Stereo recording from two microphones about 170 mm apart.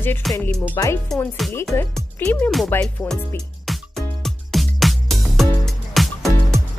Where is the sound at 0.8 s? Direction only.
15° left (ahead or behind).